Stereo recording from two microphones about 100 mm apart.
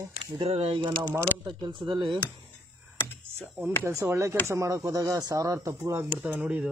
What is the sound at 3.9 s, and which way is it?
Speech, 30° right (ahead or behind).